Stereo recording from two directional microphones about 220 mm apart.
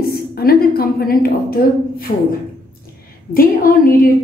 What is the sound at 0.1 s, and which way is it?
A woman's voice, 45° left (ahead or behind).